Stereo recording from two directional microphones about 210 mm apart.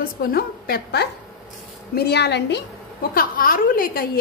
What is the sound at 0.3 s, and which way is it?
A woman's voice, 45° left (ahead or behind).